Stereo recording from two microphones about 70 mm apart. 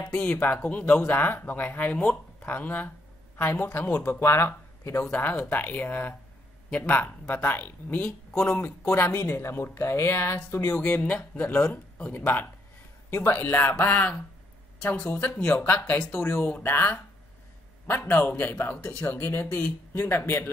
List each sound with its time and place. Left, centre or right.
0.1 s speech: left
4.0 s speech: left
9.2 s speech: left
10.8 s speech: centre
16.2 s speech: left
16.4 s speech: left
20.1 s speech: left